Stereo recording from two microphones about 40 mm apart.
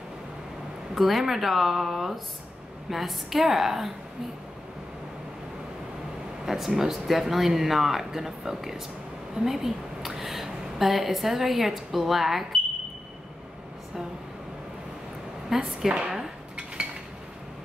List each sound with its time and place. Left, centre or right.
0.9 s speech: centre
6.4 s a sound: centre
6.8 s a woman's voice: centre
15.5 s speech: centre
15.9 s cutlery: centre